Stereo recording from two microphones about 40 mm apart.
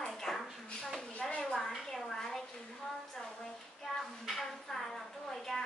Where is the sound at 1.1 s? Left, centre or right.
Left.